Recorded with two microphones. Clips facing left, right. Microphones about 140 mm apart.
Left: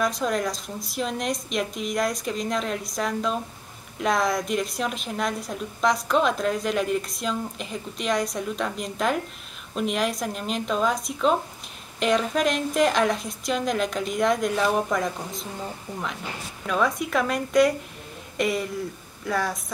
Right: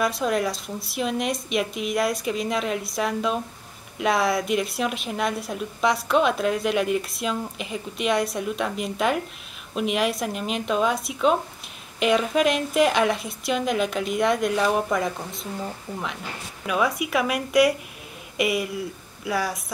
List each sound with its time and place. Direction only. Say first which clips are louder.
0.0 s a woman's voice: right 1 dB; 5° right (ahead or behind)
16.6 s a woman's voice: even; 5° right (ahead or behind)